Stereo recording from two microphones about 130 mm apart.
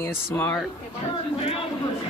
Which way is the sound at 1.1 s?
45° left (ahead or behind).